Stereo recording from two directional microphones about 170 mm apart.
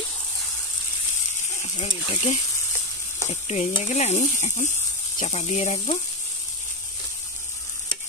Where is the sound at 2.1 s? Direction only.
30° left (ahead or behind).